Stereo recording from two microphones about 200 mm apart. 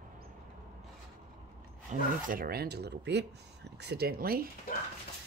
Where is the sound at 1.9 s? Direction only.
45° right (ahead or behind).